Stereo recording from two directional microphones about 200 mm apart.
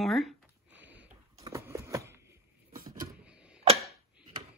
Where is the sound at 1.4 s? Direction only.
15° right (ahead or behind).